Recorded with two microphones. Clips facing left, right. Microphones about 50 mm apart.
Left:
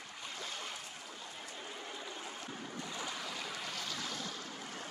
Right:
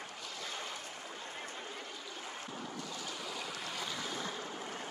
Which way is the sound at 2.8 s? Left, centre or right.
Left.